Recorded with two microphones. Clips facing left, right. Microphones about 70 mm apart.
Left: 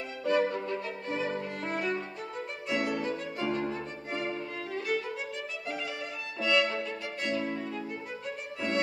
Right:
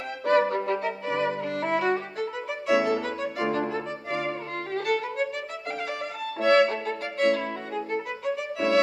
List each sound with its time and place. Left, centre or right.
0.2 s violin: right
4.7 s violin: right
6.4 s violin: right